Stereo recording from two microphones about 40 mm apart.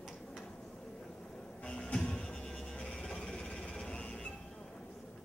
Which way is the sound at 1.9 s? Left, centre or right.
Left.